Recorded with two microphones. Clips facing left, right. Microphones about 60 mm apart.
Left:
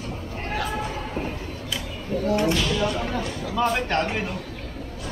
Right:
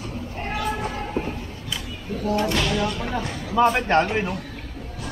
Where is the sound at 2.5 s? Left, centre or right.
Right.